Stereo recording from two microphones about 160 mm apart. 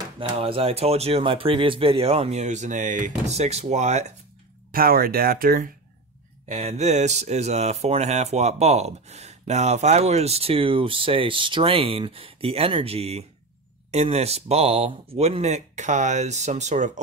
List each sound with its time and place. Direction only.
0.2 s speech: 35° right (ahead or behind)
4.7 s speech: 65° right (ahead or behind)
6.5 s speech: 45° right (ahead or behind)